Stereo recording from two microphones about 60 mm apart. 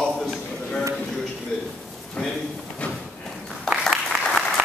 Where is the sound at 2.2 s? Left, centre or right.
Centre.